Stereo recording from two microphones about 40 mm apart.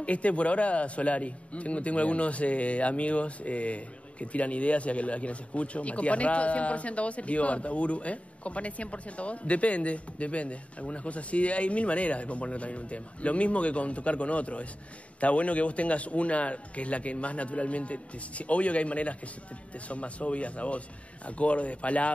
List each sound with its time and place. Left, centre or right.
0.0 s a man's voice: left